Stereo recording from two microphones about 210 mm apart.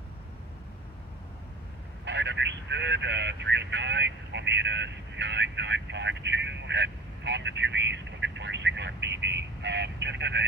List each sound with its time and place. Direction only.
2.0 s speech: 55° right (ahead or behind)